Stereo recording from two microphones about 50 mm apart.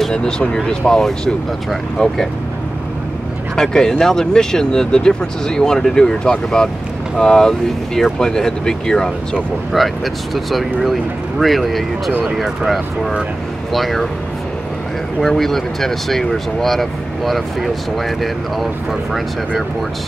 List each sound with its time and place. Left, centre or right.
0.1 s speech: centre
3.5 s speech: centre
9.7 s speech: centre
15.1 s speech: centre